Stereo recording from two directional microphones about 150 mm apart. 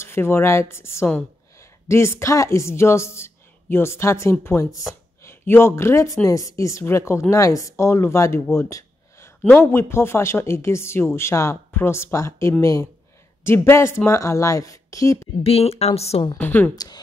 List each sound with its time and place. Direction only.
0.0 s a woman's voice: 15° left (ahead or behind)
8.5 s a sound: 20° left (ahead or behind)
9.6 s a woman's voice: 15° left (ahead or behind)
15.4 s speech: 40° left (ahead or behind)
16.3 s a woman's voice: 10° left (ahead or behind)
16.7 s speech: 25° left (ahead or behind)